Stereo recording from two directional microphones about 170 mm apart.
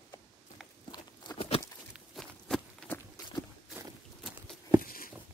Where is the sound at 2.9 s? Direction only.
20° left (ahead or behind).